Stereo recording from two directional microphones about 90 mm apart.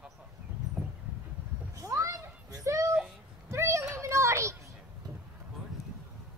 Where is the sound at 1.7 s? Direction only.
35° right (ahead or behind).